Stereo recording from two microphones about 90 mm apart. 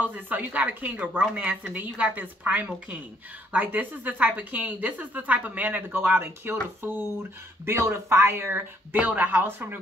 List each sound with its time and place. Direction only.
0.0 s a woman's voice: 20° right (ahead or behind)